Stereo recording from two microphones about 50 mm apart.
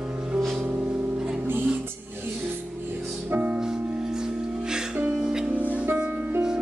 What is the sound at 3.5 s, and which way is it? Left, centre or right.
Music, centre.